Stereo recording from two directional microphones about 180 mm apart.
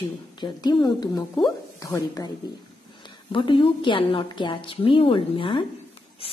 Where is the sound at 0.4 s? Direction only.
25° left (ahead or behind).